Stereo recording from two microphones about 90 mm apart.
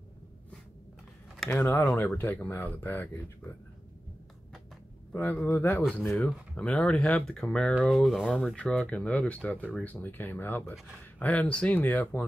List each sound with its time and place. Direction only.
1.5 s speech: 25° left (ahead or behind)
5.1 s speech: 20° left (ahead or behind)
6.1 s speech: 15° left (ahead or behind)
8.5 s speech: 10° left (ahead or behind)